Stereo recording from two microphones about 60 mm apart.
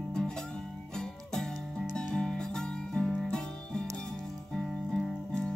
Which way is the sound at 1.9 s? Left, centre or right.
Centre.